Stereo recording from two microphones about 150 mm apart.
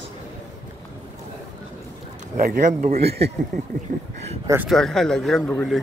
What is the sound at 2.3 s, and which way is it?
Speech, 65° right (ahead or behind).